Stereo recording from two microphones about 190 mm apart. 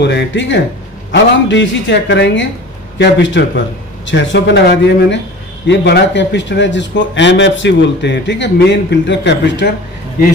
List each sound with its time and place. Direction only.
0.0 s a man's voice: 70° left (ahead or behind)